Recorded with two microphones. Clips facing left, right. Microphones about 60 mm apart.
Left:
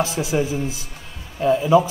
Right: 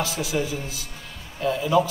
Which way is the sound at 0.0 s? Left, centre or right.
Left.